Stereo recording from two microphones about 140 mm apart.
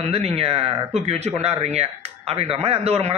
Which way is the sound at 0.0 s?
45° right (ahead or behind).